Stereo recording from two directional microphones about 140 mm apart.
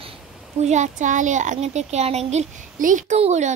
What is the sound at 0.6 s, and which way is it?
Speech, 55° right (ahead or behind).